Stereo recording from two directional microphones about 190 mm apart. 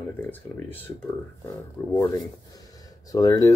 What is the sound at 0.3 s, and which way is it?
Speech, 10° left (ahead or behind).